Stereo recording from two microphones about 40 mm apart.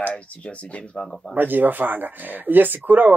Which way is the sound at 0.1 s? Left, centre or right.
Left.